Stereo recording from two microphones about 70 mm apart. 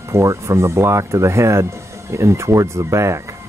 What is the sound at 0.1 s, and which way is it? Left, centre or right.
Speech, right.